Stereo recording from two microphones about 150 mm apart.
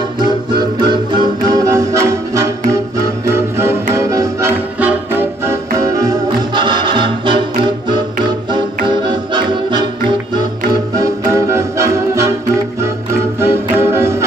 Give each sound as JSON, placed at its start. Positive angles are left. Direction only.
{"t": 0.8, "sound": "music", "side_deg": -30}
{"t": 11.0, "sound": "music", "side_deg": -20}